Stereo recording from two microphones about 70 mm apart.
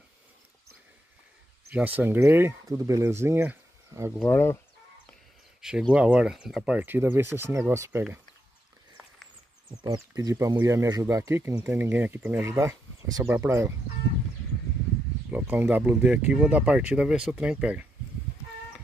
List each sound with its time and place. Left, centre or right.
1.7 s speech: right
2.1 s speech: right
2.6 s speech: right
3.1 s speech: right
4.2 s speech: left
5.6 s speech: centre
6.8 s speech: right
7.5 s speech: right
9.8 s speech: right
10.3 s speech: right
11.7 s speech: right
12.5 s speech: right
15.3 s speech: right